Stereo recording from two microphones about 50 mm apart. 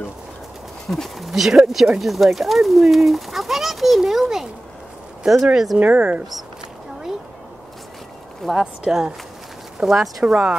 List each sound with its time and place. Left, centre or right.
0.8 s speech: centre
5.8 s speech: right
8.5 s speech: centre